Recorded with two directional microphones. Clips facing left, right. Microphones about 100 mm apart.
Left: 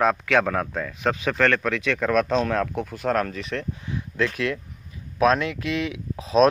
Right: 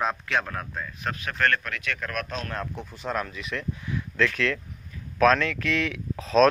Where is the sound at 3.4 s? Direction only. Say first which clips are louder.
Left 3 dB; 35° left (ahead or behind); by 6.5 s 20° left (ahead or behind).